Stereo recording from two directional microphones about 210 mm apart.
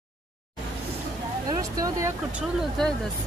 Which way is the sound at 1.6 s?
15° right (ahead or behind).